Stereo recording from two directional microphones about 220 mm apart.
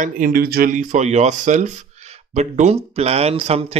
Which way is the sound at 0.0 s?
40° right (ahead or behind).